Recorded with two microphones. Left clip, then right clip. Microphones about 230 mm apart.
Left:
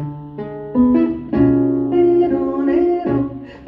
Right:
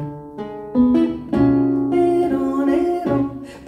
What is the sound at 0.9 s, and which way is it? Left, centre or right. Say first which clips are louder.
Music: left 2 dB; right.